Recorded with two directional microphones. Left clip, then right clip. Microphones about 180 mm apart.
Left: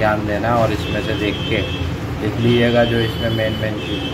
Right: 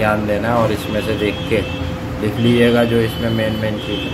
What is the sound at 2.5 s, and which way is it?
Speech, 20° right (ahead or behind).